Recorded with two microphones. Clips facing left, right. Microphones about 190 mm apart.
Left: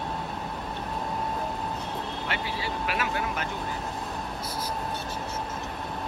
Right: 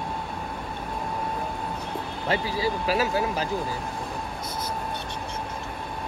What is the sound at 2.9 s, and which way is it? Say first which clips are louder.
Speech: right 5 dB; 35° right (ahead or behind).